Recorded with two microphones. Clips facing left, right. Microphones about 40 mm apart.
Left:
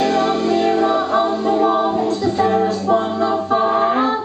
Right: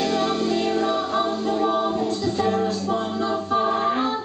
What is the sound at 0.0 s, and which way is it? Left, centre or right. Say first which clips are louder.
Music: left 6 dB; centre.